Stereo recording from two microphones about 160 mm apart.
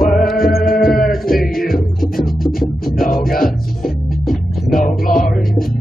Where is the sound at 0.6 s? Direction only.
65° left (ahead or behind).